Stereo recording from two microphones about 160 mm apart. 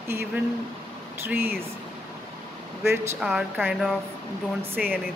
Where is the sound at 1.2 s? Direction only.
15° right (ahead or behind).